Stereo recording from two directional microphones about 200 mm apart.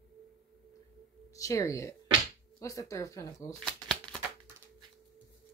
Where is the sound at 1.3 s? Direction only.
15° left (ahead or behind).